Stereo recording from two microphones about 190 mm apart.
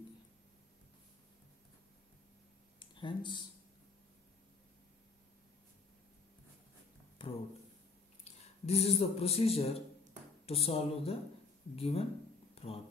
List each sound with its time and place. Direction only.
2.8 s speech: 25° left (ahead or behind)
7.2 s a sound: 25° left (ahead or behind)
8.2 s speech: 35° left (ahead or behind)